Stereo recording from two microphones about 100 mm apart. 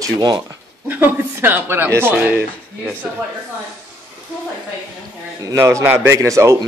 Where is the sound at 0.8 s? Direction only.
20° right (ahead or behind).